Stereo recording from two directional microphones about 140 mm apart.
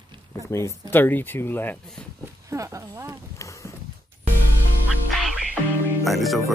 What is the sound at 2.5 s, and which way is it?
Speech, 20° right (ahead or behind).